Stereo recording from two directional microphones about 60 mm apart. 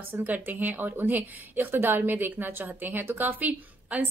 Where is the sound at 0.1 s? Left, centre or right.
Right.